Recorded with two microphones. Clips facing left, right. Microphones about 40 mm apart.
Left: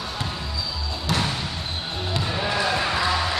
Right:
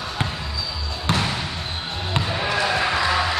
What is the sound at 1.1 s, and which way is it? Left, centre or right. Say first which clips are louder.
Trickle: right 2 dB; right.